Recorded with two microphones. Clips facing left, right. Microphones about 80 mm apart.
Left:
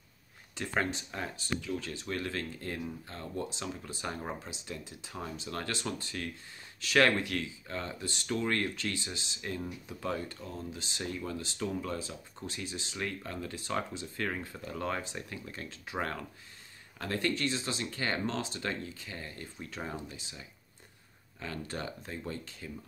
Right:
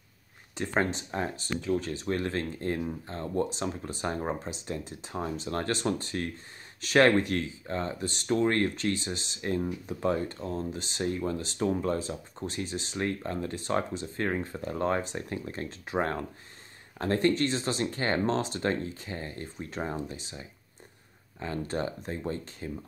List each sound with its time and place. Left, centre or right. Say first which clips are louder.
0.6 s speech: right 4 dB; right